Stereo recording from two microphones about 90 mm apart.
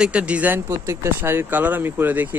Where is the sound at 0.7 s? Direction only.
30° right (ahead or behind).